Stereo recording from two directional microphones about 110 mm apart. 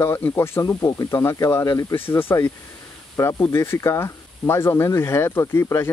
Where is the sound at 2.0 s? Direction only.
20° left (ahead or behind).